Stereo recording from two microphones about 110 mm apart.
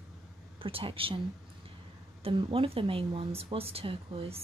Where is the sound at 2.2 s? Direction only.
50° right (ahead or behind).